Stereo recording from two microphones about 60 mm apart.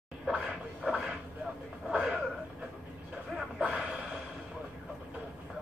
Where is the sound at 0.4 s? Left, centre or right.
Centre.